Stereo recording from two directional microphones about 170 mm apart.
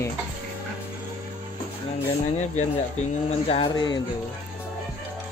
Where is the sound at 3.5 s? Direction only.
30° left (ahead or behind).